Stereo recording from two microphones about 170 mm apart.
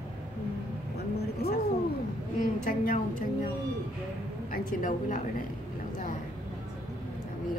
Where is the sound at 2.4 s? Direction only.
55° left (ahead or behind).